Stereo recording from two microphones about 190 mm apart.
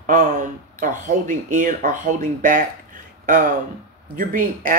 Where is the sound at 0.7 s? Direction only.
45° right (ahead or behind).